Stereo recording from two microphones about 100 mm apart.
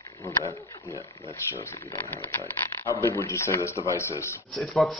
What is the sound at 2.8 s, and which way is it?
Speech, 30° left (ahead or behind).